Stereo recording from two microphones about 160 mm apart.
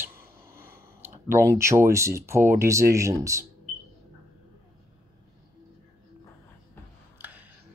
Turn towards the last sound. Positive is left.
turn(degrees=-10)  # may be behind; listen again after turning